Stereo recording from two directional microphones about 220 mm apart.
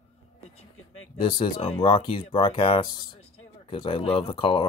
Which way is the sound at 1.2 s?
25° left (ahead or behind).